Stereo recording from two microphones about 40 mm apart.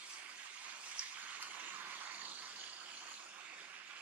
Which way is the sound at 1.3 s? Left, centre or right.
Right.